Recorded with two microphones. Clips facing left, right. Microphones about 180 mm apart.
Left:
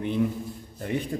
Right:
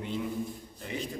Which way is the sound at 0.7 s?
55° left (ahead or behind).